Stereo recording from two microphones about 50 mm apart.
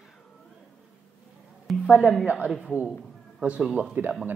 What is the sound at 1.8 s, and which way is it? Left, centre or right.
A woman's voice, right.